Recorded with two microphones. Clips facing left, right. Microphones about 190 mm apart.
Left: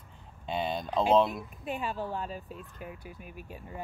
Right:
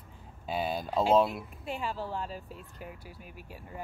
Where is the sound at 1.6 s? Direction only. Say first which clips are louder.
Left 2 dB; 15° left (ahead or behind).